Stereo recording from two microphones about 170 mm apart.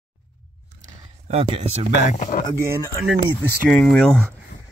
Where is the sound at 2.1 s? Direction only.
45° left (ahead or behind).